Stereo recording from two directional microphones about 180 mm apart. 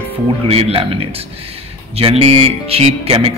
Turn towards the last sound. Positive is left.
turn(degrees=-35)  # may be behind; listen again after turning